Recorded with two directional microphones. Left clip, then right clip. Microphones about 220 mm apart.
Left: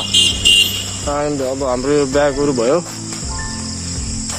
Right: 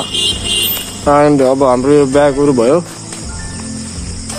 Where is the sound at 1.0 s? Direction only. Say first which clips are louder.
Right 11 dB; 25° right (ahead or behind).